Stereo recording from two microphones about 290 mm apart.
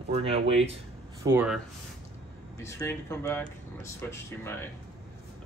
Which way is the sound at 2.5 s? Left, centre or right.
Centre.